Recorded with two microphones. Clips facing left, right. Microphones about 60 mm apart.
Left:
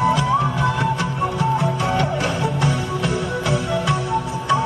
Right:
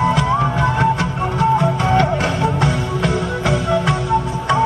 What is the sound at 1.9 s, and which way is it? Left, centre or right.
Music, right.